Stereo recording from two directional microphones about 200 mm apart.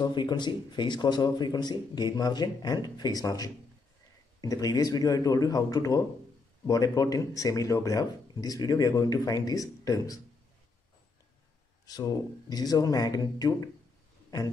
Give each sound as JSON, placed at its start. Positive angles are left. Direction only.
{"t": 0.0, "sound": "speech", "side_deg": 20}
{"t": 11.8, "sound": "speech", "side_deg": 20}